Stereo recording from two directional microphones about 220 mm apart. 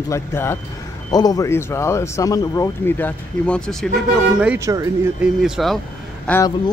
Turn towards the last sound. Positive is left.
turn(degrees=15)  # may be behind; listen again after turning